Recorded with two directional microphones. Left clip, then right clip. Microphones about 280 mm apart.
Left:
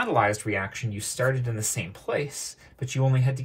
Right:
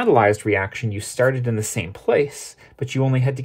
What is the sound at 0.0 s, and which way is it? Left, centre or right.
Speech, right.